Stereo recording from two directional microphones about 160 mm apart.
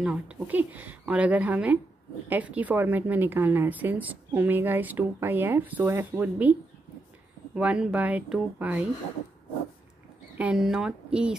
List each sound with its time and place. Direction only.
0.0 s a woman's voice: 5° right (ahead or behind)
7.5 s a woman's voice: 5° right (ahead or behind)
10.3 s speech: 5° right (ahead or behind)